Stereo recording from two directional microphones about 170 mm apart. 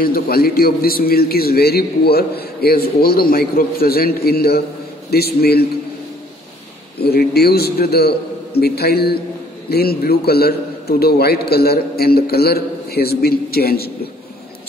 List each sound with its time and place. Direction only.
0.0 s a man's voice: 60° left (ahead or behind)
7.0 s a man's voice: 70° left (ahead or behind)